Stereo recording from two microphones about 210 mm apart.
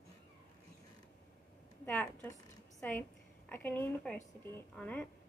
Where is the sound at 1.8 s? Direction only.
5° left (ahead or behind).